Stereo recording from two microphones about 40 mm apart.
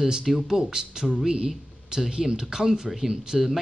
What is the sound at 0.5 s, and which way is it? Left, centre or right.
Speech, centre.